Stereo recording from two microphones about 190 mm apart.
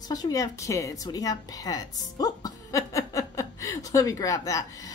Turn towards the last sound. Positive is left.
turn(degrees=15)  # may be behind; listen again after turning